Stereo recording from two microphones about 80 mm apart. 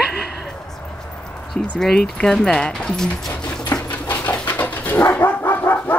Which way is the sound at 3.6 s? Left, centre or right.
Left.